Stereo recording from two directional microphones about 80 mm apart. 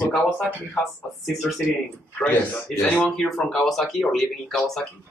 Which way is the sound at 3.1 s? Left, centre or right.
Centre.